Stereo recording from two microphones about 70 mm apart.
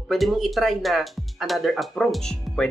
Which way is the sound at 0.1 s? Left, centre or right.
Centre.